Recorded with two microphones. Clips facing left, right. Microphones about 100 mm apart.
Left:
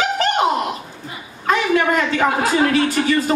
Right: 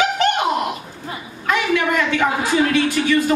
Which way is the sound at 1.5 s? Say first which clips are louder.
Left 2 dB; 35° left (ahead or behind).